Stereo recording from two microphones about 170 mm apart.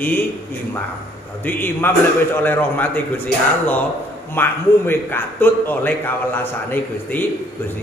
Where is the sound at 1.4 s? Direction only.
10° left (ahead or behind).